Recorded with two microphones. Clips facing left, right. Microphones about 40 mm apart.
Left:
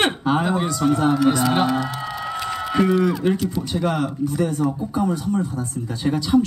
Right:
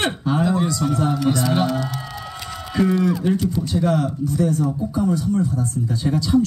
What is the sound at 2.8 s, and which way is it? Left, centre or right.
Speech, left.